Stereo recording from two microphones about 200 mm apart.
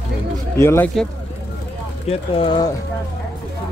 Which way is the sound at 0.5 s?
15° left (ahead or behind).